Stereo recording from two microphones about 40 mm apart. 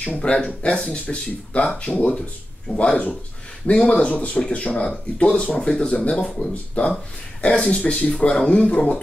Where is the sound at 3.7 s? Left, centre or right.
Left.